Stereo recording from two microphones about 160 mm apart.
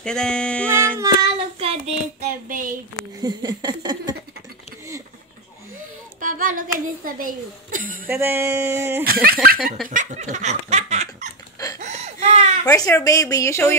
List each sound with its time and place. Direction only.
0.0 s a sound: 5° left (ahead or behind)
0.7 s child singing: 15° right (ahead or behind)
1.2 s child singing: 40° right (ahead or behind)
2.4 s a woman's voice: 60° right (ahead or behind)
3.2 s a sound: 25° right (ahead or behind)
6.2 s child singing: 60° right (ahead or behind)
7.2 s a woman's voice: 60° right (ahead or behind)
8.1 s a sound: 15° right (ahead or behind)
9.0 s speech: 70° right (ahead or behind)
9.8 s speech: 50° right (ahead or behind)
11.8 s a sound: 45° right (ahead or behind)
12.6 s speech: 20° left (ahead or behind)